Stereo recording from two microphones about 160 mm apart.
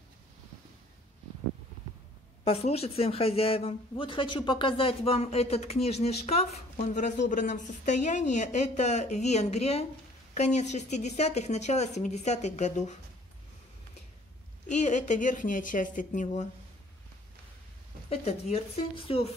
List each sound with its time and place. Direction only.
2.4 s a woman's voice: 40° left (ahead or behind)
14.7 s a woman's voice: 50° left (ahead or behind)
18.1 s speech: 40° left (ahead or behind)